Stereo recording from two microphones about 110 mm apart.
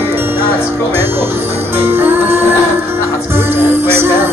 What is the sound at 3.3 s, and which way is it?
Music, 20° right (ahead or behind).